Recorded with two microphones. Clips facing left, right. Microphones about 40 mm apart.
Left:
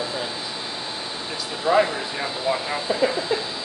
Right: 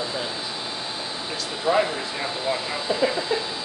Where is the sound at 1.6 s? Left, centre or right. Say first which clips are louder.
Left 2 dB; centre.